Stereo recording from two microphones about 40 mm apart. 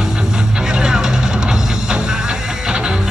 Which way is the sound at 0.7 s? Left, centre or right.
Centre.